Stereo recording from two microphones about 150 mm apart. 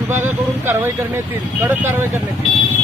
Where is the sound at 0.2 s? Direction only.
15° right (ahead or behind).